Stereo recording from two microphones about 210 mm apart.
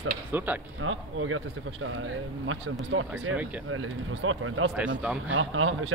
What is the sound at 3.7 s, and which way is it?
Speech, 75° right (ahead or behind).